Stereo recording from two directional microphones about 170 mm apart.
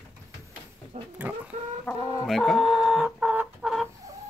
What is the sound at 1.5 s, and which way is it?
Chicken, 45° right (ahead or behind).